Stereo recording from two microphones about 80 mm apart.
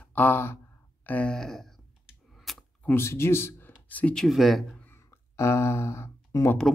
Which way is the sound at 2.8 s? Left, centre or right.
Left.